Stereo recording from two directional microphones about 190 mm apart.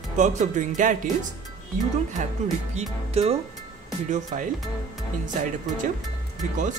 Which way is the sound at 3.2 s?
35° right (ahead or behind).